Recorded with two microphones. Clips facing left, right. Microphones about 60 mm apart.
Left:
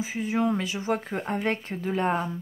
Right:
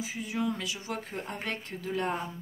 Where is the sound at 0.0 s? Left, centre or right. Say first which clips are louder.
Left 6 dB; left.